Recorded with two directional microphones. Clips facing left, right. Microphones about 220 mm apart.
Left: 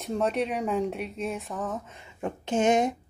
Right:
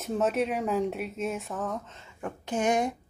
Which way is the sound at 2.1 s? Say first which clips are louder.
Left 4 dB; 25° left (ahead or behind).